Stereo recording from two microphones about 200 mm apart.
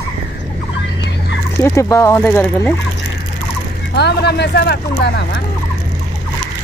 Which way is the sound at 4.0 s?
55° left (ahead or behind).